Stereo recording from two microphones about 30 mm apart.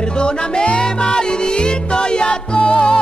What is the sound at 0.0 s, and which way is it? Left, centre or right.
Music, left.